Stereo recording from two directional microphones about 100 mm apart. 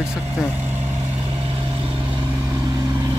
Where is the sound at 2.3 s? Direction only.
30° right (ahead or behind).